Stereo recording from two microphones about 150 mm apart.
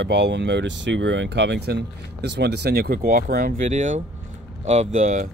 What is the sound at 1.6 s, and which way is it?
Speech, 90° right.